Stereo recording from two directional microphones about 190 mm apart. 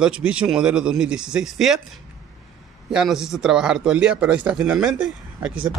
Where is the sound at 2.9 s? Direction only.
5° right (ahead or behind).